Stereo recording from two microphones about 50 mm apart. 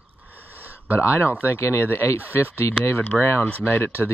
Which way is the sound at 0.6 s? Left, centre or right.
Right.